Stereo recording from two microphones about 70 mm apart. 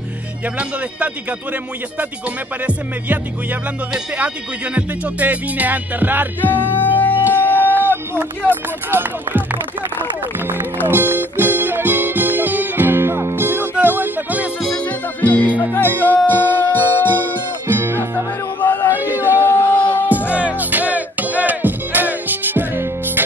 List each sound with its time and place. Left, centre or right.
0.6 s music: centre
4.7 s music: right
6.4 s music: left
7.8 s a sound: right
8.5 s music: right
10.9 s music: right
14.9 s music: left
17.6 s music: right
18.6 s a sound: left
18.9 s a sound: right
19.2 s a sound: left
19.8 s music: left
20.2 s music: right